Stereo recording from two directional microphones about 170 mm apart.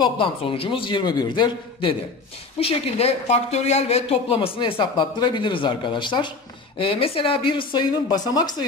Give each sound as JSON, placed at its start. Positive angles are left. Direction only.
{"t": 0.0, "sound": "a man's voice", "side_deg": 30}